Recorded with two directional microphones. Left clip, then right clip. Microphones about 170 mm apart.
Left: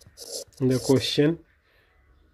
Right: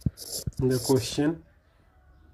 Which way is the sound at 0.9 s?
45° left (ahead or behind).